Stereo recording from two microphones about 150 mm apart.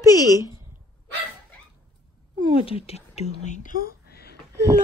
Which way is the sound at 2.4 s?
40° left (ahead or behind).